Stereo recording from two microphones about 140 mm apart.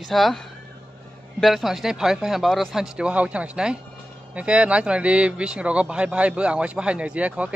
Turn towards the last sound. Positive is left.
turn(degrees=-10)  # may be behind; listen again after turning